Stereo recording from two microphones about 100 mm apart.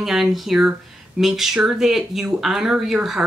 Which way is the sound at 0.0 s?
5° right (ahead or behind).